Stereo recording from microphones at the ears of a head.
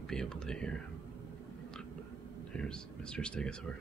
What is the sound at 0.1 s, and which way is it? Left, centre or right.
Whispering, right.